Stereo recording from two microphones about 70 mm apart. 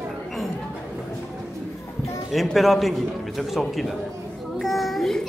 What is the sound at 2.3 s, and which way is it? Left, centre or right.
A man's voice, centre.